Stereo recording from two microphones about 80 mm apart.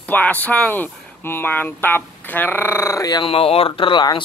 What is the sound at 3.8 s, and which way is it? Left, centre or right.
Speech, left.